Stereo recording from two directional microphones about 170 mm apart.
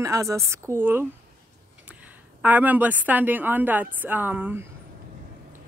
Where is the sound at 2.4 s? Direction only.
10° right (ahead or behind).